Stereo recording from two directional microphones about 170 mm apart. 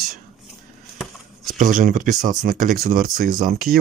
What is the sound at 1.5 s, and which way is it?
Speech, 50° right (ahead or behind).